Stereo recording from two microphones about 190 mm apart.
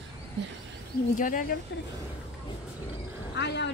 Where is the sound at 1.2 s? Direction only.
45° left (ahead or behind).